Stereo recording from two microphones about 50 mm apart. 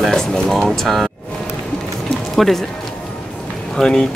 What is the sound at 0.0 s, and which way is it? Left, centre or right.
Speech, centre.